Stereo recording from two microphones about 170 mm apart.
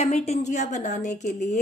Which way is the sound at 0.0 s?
40° left (ahead or behind).